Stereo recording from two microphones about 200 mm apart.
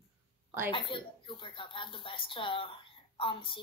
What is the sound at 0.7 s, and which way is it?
Speech, 25° left (ahead or behind).